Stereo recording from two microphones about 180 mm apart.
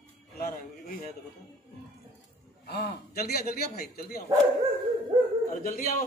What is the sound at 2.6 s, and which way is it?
A man's voice, 55° left (ahead or behind).